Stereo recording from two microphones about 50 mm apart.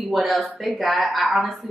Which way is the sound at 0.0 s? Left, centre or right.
Centre.